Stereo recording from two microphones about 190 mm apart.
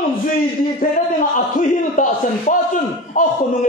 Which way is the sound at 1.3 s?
45° left (ahead or behind).